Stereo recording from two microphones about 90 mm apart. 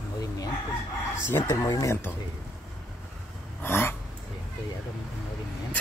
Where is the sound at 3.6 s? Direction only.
25° left (ahead or behind).